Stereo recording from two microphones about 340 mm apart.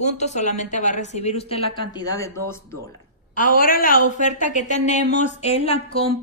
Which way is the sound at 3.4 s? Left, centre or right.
Left.